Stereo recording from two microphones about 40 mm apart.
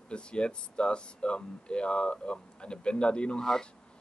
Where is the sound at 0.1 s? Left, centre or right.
Left.